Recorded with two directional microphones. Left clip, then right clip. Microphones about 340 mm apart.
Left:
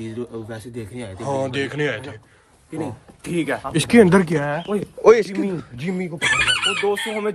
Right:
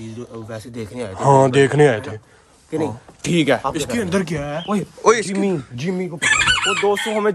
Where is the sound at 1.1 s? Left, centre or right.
Right.